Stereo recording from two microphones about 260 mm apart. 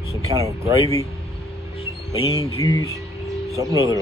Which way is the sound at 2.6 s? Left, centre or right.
Centre.